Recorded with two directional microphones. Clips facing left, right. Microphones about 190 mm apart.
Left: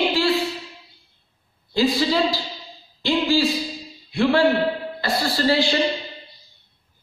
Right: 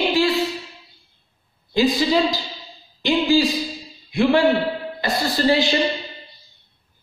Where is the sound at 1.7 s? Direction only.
20° right (ahead or behind).